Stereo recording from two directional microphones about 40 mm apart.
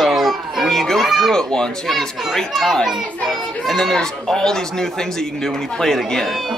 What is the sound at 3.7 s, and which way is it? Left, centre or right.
Speech, centre.